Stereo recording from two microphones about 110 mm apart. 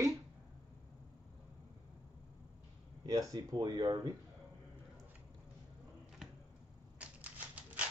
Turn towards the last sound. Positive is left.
turn(degrees=-15)  # may be behind; listen again after turning